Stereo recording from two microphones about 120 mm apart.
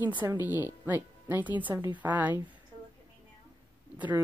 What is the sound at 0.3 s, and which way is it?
Speech, 15° right (ahead or behind).